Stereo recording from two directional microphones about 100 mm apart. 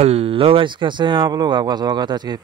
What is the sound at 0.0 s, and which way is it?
Speech, 85° right.